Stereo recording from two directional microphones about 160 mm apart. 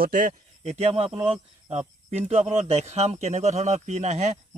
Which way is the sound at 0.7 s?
40° right (ahead or behind).